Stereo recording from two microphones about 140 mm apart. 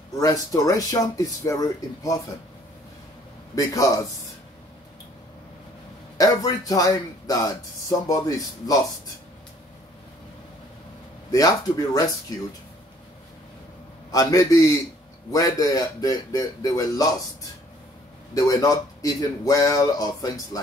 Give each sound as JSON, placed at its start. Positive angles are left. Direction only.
{"t": 0.2, "sound": "a man's voice", "side_deg": 25}
{"t": 3.5, "sound": "a man's voice", "side_deg": 25}
{"t": 6.1, "sound": "a man's voice", "side_deg": 25}
{"t": 11.3, "sound": "a man's voice", "side_deg": 25}
{"t": 14.1, "sound": "a man's voice", "side_deg": 25}